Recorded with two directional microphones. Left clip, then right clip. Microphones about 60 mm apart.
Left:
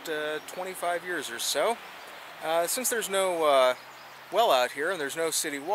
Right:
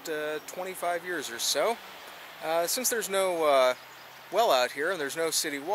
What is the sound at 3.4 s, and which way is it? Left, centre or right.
Speech, centre.